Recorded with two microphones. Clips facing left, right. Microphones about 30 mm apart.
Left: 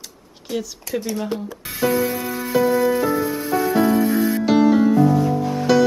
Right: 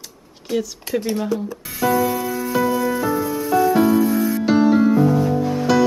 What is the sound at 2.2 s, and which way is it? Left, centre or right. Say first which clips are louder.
Music: left 1 dB; left.